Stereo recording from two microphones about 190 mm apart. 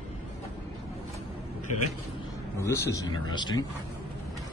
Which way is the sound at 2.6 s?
15° left (ahead or behind).